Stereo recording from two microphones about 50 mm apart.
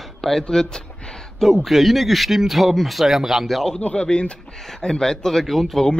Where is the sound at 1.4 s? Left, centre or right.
Centre.